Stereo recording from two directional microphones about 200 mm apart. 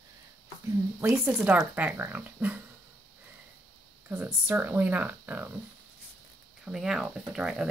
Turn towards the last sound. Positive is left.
turn(degrees=-5)  # may be behind; listen again after turning